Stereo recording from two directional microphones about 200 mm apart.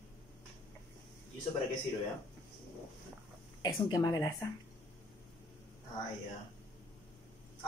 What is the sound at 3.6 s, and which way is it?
Speech, 20° left (ahead or behind).